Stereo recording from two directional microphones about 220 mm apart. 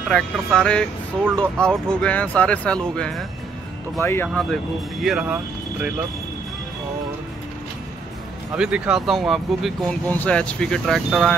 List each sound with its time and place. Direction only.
0.1 s speech: 5° left (ahead or behind)
8.5 s speech: 5° right (ahead or behind)